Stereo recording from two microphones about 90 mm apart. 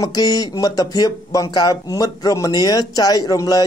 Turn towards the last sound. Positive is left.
turn(degrees=40)  # may be behind; listen again after turning